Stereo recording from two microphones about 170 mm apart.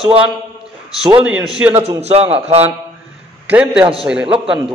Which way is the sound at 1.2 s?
5° right (ahead or behind).